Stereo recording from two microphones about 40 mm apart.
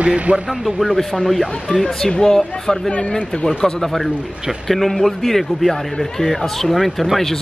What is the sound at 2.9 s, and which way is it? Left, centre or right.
Speech, left.